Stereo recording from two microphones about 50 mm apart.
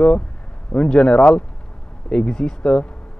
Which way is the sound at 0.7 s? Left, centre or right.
Centre.